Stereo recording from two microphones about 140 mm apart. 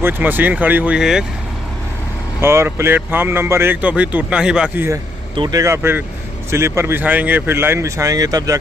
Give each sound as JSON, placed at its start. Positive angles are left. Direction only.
{"t": 0.0, "sound": "a man's voice", "side_deg": -15}
{"t": 2.4, "sound": "a man's voice", "side_deg": -20}
{"t": 5.3, "sound": "speech", "side_deg": -35}
{"t": 5.6, "sound": "a man's voice", "side_deg": -15}